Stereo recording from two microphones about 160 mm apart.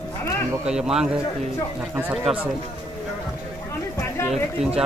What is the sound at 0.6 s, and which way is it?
Speech, 5° right (ahead or behind).